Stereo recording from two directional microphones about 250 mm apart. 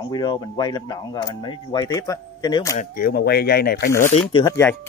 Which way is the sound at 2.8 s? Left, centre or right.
Left.